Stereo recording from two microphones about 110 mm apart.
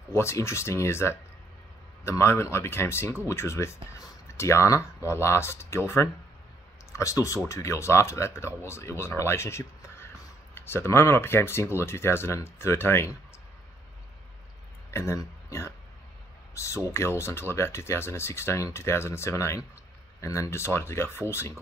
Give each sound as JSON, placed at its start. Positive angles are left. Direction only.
{"t": 0.1, "sound": "speech", "side_deg": 25}
{"t": 14.9, "sound": "a sound", "side_deg": 25}
{"t": 16.5, "sound": "speech", "side_deg": 25}